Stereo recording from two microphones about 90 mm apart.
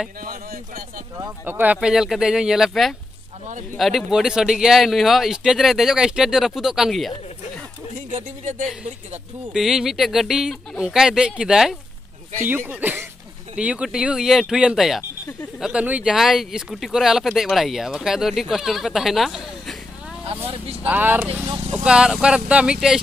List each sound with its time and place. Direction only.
1.4 s speech: 20° right (ahead or behind)
1.8 s speech: 5° right (ahead or behind)
9.5 s speech: 5° right (ahead or behind)
12.4 s speech: 20° right (ahead or behind); by 15.0 s 5° right (ahead or behind)
15.6 s speech: 15° right (ahead or behind)
20.2 s speech: 90° right
20.8 s speech: 20° right (ahead or behind)
21.8 s speech: 10° right (ahead or behind)